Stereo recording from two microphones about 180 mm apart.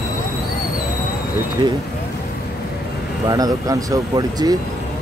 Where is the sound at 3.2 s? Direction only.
20° right (ahead or behind).